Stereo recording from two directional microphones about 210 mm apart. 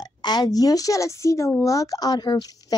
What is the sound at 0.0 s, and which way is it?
A child's voice, 20° left (ahead or behind).